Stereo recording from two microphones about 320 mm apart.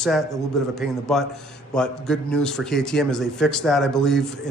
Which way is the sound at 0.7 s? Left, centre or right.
Centre.